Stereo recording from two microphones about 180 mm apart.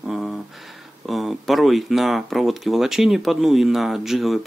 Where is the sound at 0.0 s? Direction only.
Centre (ahead or behind).